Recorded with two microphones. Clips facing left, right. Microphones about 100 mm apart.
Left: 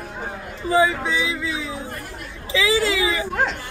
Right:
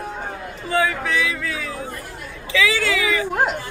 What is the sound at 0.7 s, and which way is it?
Speech, 25° left (ahead or behind).